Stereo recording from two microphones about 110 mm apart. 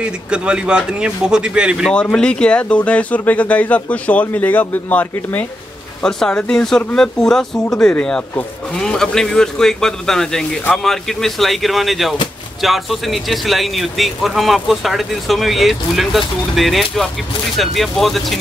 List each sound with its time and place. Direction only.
0.3 s a man's voice: 10° right (ahead or behind)
1.9 s speech: 5° left (ahead or behind)